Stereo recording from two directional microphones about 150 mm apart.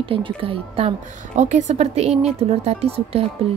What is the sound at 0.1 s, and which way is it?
A woman's voice, 35° right (ahead or behind).